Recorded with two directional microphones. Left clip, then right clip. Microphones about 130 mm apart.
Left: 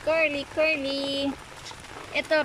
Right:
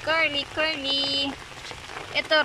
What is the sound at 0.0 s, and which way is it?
Speech, 15° left (ahead or behind).